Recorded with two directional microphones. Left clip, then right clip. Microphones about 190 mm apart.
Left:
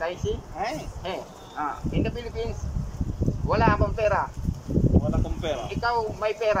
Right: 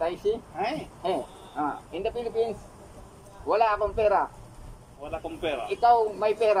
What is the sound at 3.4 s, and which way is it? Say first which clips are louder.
Speech: even; 20° right (ahead or behind).